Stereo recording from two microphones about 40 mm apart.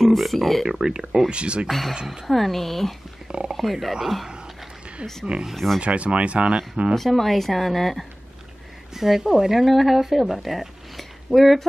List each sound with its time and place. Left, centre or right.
0.0 s speech: centre
0.7 s speech: centre
1.7 s speech: centre
3.3 s speech: right
3.5 s speech: centre
5.5 s speech: centre
5.8 s speech: right
7.0 s speech: centre